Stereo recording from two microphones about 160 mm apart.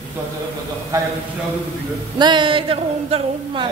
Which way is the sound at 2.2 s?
30° right (ahead or behind).